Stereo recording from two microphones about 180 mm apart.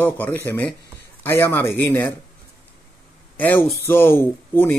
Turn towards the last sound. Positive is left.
turn(degrees=10)  # may be behind; listen again after turning